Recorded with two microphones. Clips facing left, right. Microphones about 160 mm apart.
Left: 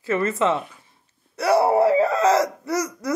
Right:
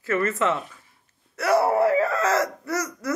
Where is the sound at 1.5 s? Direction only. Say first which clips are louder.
Left 2 dB; 25° left (ahead or behind).